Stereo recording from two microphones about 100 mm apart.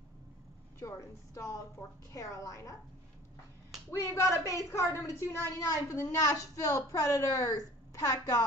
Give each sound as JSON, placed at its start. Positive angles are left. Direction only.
{"t": 0.7, "sound": "a woman's voice", "side_deg": 30}
{"t": 4.0, "sound": "a woman's voice", "side_deg": 30}